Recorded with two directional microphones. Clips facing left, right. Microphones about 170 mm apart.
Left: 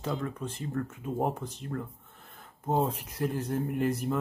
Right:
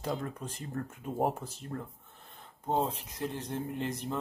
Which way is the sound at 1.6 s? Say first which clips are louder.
Left 3 dB; 30° right (ahead or behind).